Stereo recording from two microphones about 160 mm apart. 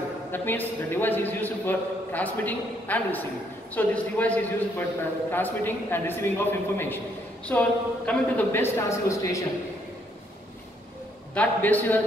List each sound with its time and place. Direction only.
0.3 s a man's voice: 15° left (ahead or behind)
11.3 s a man's voice: 10° left (ahead or behind)